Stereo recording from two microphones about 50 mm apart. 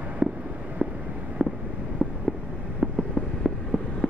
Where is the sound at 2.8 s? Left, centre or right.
Centre.